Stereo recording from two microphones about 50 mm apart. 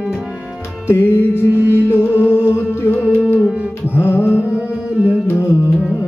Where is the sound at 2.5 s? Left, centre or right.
Left.